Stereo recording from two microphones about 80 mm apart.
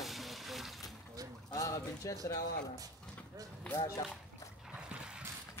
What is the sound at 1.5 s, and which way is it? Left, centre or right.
Speech, left.